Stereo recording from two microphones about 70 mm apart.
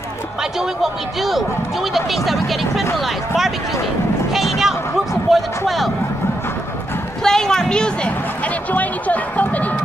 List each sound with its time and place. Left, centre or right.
2.0 s speech: centre
4.3 s a sound: centre
5.3 s speech: centre
7.2 s speech: centre
8.7 s speech: left